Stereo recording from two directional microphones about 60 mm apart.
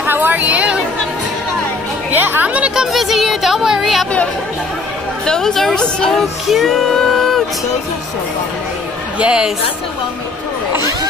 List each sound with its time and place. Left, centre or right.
0.0 s a woman's voice: right
2.1 s speech: right
2.7 s speech: centre
5.2 s speech: centre
6.5 s music: centre
9.2 s a woman's voice: centre